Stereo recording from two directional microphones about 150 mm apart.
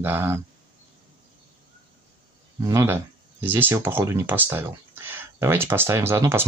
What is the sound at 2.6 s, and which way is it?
Speech, 20° right (ahead or behind).